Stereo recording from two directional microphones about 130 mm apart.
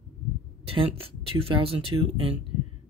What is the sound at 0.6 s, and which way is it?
Speech, 45° right (ahead or behind).